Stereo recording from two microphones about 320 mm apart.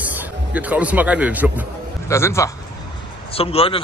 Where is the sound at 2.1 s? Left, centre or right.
Centre.